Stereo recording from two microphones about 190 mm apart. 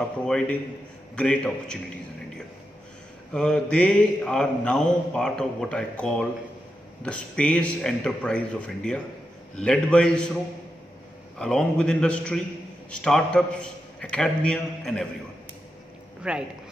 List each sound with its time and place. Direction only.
0.2 s mantra: 5° left (ahead or behind)
3.3 s mantra: 5° left (ahead or behind)
7.0 s speech: 5° left (ahead or behind)
9.6 s mantra: 5° left (ahead or behind)
16.2 s speech: 5° right (ahead or behind)